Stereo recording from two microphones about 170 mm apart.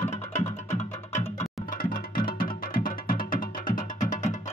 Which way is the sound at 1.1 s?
45° left (ahead or behind).